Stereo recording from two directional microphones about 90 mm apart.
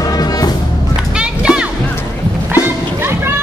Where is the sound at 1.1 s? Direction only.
10° right (ahead or behind).